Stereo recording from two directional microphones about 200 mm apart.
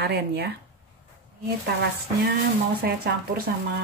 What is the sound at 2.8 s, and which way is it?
Speech, 50° right (ahead or behind).